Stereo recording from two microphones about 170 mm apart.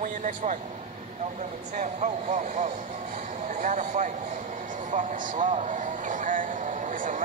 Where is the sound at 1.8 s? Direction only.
45° right (ahead or behind).